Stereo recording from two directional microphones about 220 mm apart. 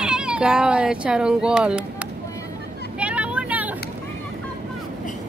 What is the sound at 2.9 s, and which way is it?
Vehicle, 5° right (ahead or behind).